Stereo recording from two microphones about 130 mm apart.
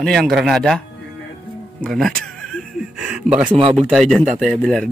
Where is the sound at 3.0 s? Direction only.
10° right (ahead or behind).